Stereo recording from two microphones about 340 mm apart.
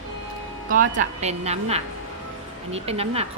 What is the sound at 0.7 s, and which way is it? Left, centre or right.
A woman's voice, right.